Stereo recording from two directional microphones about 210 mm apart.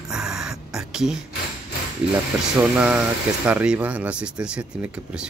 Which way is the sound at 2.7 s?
5° right (ahead or behind).